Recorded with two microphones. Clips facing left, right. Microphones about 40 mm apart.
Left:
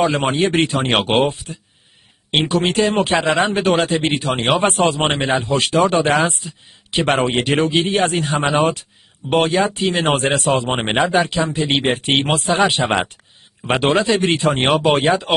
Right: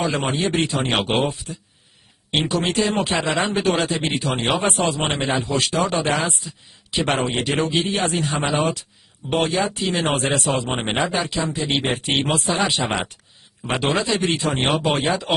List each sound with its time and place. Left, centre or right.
0.0 s speech: left